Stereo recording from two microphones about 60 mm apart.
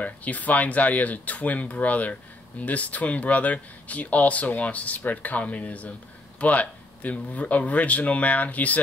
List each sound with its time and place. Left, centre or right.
0.0 s speech: left